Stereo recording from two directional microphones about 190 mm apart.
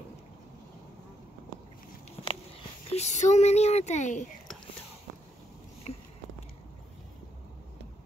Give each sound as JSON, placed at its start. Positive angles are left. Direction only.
{"t": 2.9, "sound": "speech", "side_deg": 35}